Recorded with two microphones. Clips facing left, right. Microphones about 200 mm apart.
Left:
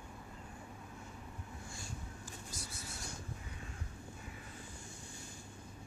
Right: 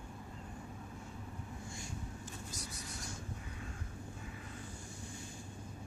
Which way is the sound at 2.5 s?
20° right (ahead or behind).